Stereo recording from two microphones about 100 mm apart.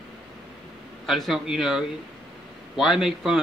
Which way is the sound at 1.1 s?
Centre (ahead or behind).